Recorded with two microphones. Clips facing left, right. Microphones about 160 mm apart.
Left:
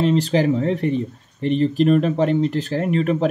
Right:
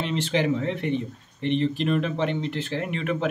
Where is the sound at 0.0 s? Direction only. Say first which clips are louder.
Left 7 dB; 40° left (ahead or behind).